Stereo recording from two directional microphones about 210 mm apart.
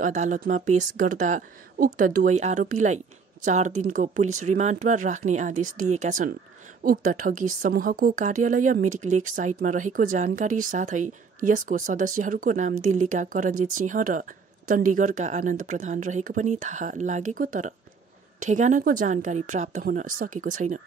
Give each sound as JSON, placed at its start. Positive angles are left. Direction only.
{"t": 0.0, "sound": "a woman's voice", "side_deg": -35}